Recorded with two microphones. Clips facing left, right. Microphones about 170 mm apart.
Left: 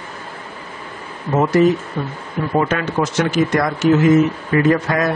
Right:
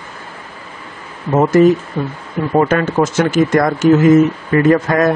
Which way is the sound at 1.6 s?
45° right (ahead or behind).